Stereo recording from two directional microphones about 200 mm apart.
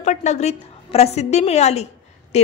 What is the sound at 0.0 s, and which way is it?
A woman's voice, 35° left (ahead or behind).